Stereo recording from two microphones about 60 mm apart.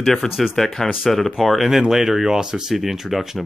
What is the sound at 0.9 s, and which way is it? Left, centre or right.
Speech, centre.